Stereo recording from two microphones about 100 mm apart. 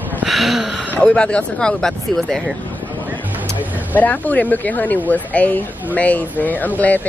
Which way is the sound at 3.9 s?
15° left (ahead or behind).